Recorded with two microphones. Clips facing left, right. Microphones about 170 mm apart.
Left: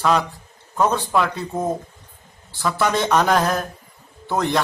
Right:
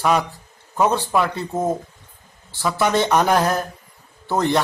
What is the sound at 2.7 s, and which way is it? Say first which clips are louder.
A man's voice: right 1 dB; 15° right (ahead or behind).